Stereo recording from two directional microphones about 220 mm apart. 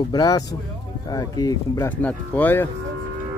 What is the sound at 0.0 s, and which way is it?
Speech, 15° left (ahead or behind).